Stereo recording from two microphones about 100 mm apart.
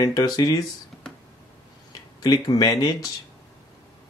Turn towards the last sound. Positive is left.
turn(degrees=40)  # may be behind; listen again after turning